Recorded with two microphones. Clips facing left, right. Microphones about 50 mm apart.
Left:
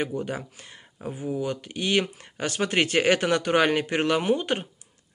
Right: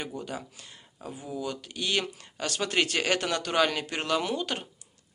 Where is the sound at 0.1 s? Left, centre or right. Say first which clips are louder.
Left 6 dB; left.